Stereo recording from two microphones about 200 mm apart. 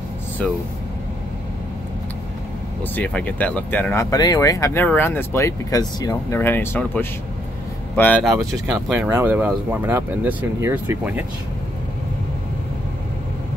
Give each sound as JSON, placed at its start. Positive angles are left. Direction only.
{"t": 2.8, "sound": "speech", "side_deg": 5}
{"t": 8.7, "sound": "speech", "side_deg": -5}